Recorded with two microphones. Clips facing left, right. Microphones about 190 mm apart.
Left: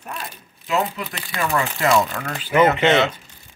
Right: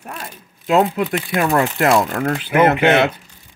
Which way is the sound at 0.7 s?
60° right (ahead or behind).